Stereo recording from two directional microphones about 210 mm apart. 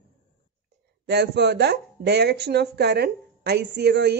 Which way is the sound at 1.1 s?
55° right (ahead or behind).